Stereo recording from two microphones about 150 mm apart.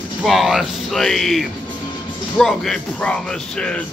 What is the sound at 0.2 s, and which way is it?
A man's voice, centre (ahead or behind).